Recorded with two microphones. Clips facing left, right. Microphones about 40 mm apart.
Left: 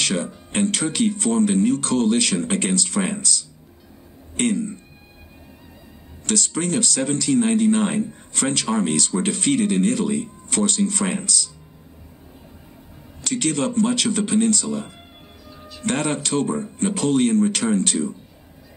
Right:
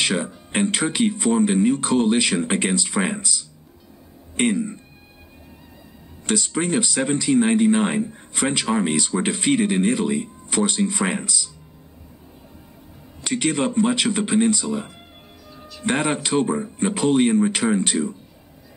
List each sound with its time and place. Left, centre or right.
0.0 s speech: centre
6.2 s speech: centre
13.2 s speech: centre